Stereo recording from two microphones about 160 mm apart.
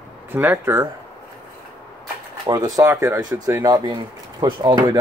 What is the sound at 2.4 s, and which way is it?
Speech, 20° right (ahead or behind).